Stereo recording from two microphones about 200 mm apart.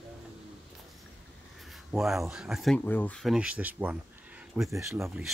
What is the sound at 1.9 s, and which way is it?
Speech, centre (ahead or behind).